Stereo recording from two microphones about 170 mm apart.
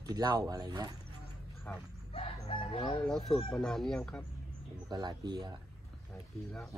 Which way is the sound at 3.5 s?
5° left (ahead or behind).